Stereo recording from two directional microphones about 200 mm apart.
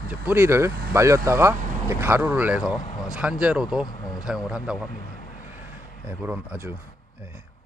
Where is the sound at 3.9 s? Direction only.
20° left (ahead or behind).